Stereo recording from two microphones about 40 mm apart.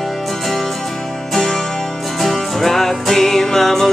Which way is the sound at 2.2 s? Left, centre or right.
Centre.